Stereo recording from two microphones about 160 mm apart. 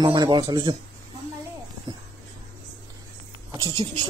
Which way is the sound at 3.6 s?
35° right (ahead or behind).